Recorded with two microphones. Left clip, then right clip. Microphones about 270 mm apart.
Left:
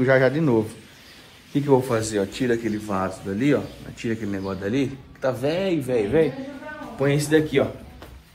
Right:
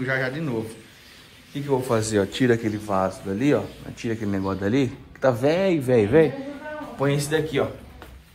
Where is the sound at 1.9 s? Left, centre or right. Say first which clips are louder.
Right 1 dB; right.